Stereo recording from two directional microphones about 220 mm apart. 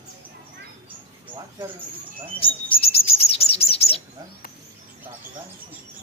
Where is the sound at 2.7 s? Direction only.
25° left (ahead or behind).